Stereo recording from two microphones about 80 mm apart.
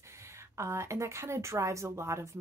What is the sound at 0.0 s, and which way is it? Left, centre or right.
A woman's voice, right.